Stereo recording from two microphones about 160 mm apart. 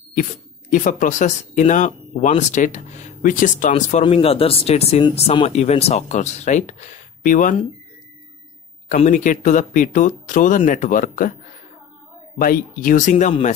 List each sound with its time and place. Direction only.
0.1 s speech: 55° left (ahead or behind)
4.0 s speech: 35° left (ahead or behind); by 7.5 s 55° left (ahead or behind)
8.9 s speech: 55° left (ahead or behind)
12.4 s speech: 60° left (ahead or behind)